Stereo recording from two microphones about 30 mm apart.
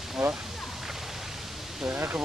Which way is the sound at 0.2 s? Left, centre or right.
Right.